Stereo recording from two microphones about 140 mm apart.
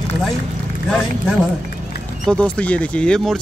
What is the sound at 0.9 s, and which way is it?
Speech, centre (ahead or behind).